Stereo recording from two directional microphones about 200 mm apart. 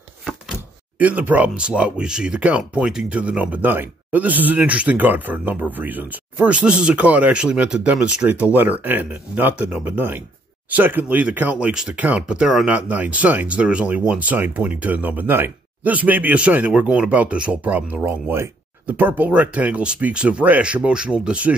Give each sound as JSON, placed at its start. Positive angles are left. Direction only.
{"t": 0.9, "sound": "speech", "side_deg": -5}